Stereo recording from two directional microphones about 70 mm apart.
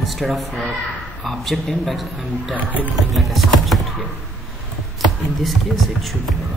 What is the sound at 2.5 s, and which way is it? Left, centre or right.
Speech, right.